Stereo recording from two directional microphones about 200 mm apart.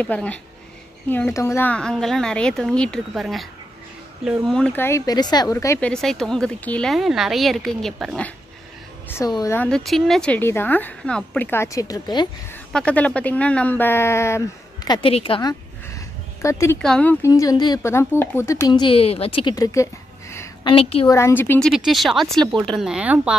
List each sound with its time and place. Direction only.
0.0 s a woman's voice: 5° left (ahead or behind)
9.1 s speech: 15° left (ahead or behind)
12.7 s speech: 5° left (ahead or behind)
14.9 s a woman's voice: 25° left (ahead or behind)
15.9 s a sound: 15° left (ahead or behind)
16.8 s speech: 5° left (ahead or behind)
20.6 s a woman's voice: 25° left (ahead or behind)
21.1 s a woman's voice: 10° left (ahead or behind); by 23.3 s 5° right (ahead or behind)